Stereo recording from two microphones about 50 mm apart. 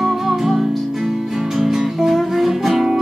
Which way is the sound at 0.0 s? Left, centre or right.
Centre.